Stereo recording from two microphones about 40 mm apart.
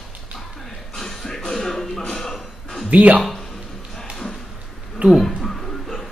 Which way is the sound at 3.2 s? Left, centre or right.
Centre.